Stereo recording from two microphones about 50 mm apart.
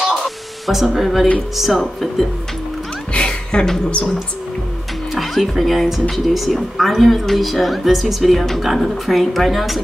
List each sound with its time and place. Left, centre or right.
0.2 s spray: centre
1.6 s speech: centre
3.1 s music: centre
3.6 s speech: centre